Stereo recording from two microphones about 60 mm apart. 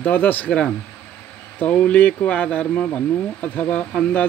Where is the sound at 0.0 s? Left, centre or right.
Left.